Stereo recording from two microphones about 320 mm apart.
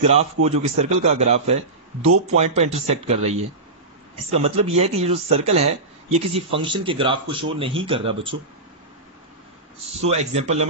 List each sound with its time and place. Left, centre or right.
0.0 s a man's voice: right
9.8 s a man's voice: centre